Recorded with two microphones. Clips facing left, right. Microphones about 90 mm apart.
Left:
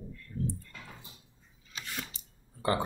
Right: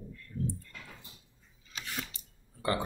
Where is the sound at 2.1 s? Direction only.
25° left (ahead or behind).